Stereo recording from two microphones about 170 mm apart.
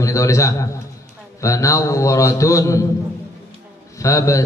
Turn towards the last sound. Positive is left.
turn(degrees=20)  # may be behind; listen again after turning